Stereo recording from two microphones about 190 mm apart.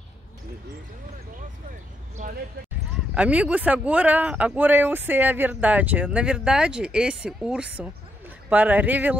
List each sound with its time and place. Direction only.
2.1 s speech: 45° right (ahead or behind)
3.2 s speech: 5° right (ahead or behind)